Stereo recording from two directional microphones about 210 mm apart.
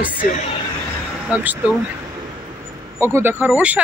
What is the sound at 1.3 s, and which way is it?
Speech, 5° right (ahead or behind).